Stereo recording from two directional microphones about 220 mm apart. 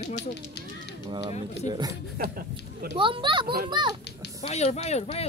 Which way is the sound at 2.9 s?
20° right (ahead or behind).